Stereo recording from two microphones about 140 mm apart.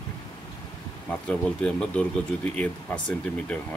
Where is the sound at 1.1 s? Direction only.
10° left (ahead or behind).